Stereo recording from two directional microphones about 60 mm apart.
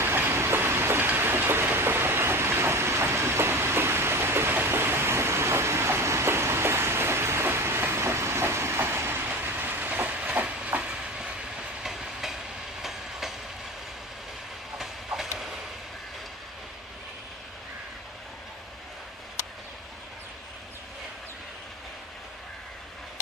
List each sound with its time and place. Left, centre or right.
0.0 s train: right; by 12.4 s centre
14.8 s train: centre